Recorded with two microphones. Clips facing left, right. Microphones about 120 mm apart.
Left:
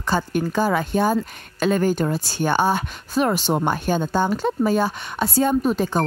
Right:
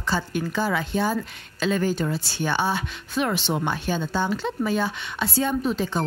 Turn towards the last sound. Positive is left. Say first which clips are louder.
# left 4 dB
turn(degrees=50)  # may be behind; listen again after turning